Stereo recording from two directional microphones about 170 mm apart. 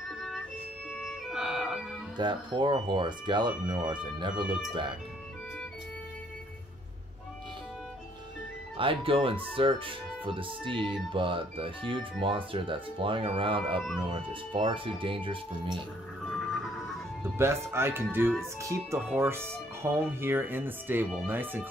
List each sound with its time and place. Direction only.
1.0 s music: centre (ahead or behind)
2.1 s speech: 25° right (ahead or behind)
8.7 s speech: 30° right (ahead or behind)
17.2 s speech: 15° right (ahead or behind)